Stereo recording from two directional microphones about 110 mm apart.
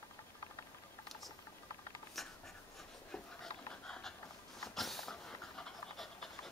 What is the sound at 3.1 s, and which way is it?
Dog, 10° left (ahead or behind).